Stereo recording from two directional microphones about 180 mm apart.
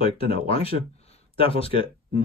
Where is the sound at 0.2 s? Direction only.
35° left (ahead or behind).